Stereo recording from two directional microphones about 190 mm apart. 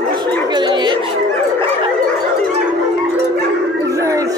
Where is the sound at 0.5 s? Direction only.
25° right (ahead or behind).